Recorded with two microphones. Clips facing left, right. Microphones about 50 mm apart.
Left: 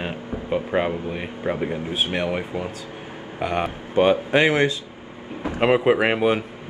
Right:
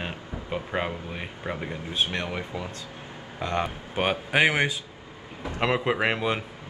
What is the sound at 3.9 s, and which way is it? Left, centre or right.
Speech, centre.